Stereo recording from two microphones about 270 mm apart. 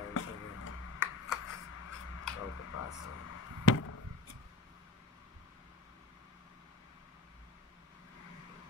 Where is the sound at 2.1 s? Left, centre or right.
Left.